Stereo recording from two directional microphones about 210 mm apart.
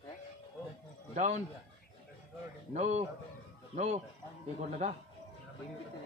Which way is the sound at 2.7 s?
30° right (ahead or behind).